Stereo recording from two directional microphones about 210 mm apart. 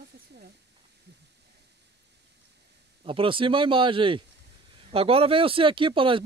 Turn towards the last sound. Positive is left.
turn(degrees=-25)  # may be behind; listen again after turning